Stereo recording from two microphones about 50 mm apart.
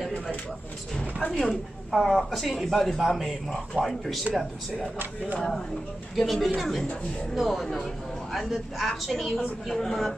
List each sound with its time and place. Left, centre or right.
0.9 s a woman's voice: centre
1.9 s a man's voice: centre
6.1 s a man's voice: centre